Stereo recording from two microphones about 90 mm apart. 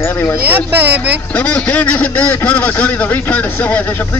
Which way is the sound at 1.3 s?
15° left (ahead or behind).